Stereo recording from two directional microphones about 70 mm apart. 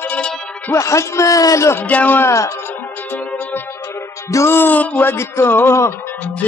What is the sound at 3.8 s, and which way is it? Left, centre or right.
Music, left.